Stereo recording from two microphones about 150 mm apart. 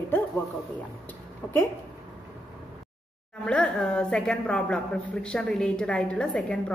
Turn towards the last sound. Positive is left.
turn(degrees=5)  # may be behind; listen again after turning